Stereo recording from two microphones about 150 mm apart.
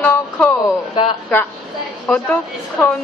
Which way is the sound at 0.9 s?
35° left (ahead or behind).